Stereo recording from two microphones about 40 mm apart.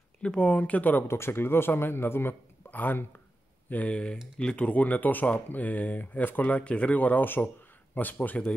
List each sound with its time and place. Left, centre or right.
0.2 s speech: left
1.1 s speech: left
2.7 s speech: left
4.4 s speech: left
7.0 s speech: left